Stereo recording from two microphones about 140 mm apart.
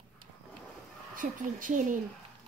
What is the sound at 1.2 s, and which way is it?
Speech, 70° right (ahead or behind).